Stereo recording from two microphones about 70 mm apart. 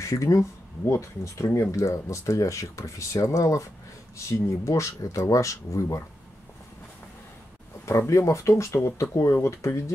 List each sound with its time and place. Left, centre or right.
0.0 s speech: left
8.1 s speech: left